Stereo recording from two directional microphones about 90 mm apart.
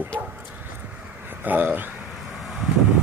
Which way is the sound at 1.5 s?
20° right (ahead or behind).